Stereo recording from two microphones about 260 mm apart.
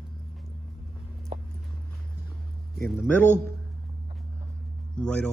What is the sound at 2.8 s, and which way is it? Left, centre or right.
Speech, centre.